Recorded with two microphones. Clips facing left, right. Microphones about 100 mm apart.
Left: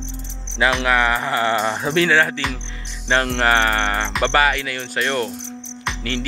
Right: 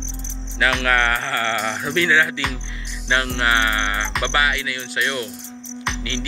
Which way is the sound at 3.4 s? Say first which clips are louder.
Left 3 dB; 40° left (ahead or behind).